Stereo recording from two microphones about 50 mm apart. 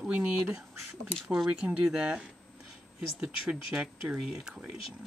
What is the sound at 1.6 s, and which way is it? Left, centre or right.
Speech, centre.